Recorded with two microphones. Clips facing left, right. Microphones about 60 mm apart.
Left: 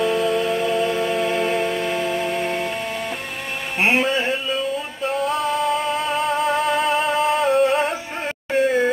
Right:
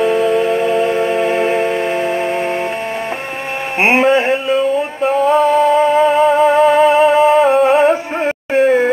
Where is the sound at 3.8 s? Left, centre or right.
Right.